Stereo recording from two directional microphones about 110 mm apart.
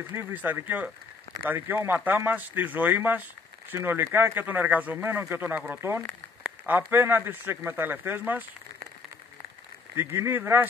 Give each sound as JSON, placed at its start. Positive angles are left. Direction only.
{"t": 0.1, "sound": "speech", "side_deg": -20}
{"t": 6.4, "sound": "a sound", "side_deg": -15}
{"t": 6.9, "sound": "speech", "side_deg": -15}
{"t": 9.9, "sound": "speech", "side_deg": -20}